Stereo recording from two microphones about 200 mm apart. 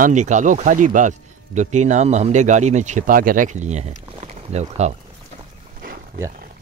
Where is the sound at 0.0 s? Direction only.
35° right (ahead or behind).